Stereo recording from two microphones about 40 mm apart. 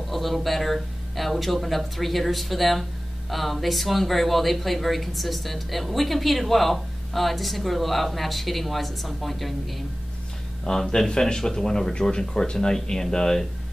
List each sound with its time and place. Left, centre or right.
0.1 s speech: centre
10.6 s speech: centre